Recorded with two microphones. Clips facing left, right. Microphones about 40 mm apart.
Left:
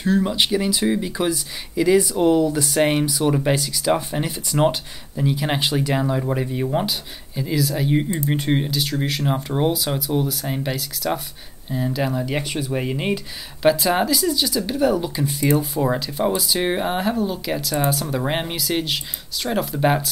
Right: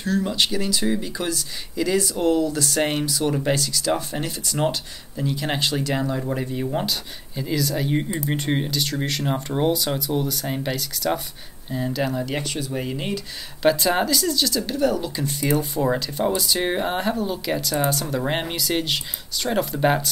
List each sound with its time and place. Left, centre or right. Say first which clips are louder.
0.0 s speech: left 3 dB; centre
13.6 s speech: left 2 dB; centre